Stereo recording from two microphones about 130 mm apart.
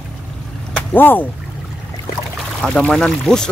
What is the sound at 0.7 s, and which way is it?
Speech, 15° left (ahead or behind).